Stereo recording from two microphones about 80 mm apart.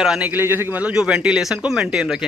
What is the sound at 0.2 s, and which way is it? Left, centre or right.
Speech, right.